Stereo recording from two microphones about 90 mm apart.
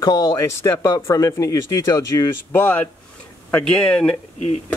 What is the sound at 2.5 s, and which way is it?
Speech, 20° left (ahead or behind).